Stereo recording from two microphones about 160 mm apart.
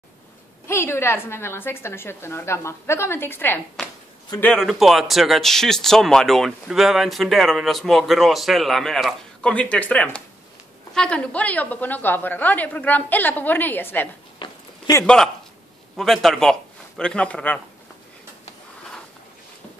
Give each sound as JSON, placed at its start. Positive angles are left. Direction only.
{"t": 0.7, "sound": "a woman's voice", "side_deg": 15}
{"t": 14.4, "sound": "a sound", "side_deg": 30}
{"t": 15.0, "sound": "speech", "side_deg": 5}